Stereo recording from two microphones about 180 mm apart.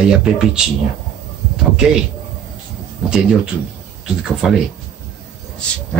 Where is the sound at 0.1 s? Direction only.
5° right (ahead or behind).